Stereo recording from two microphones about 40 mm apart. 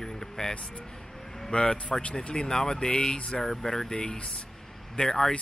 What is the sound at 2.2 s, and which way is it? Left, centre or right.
Mantra, left.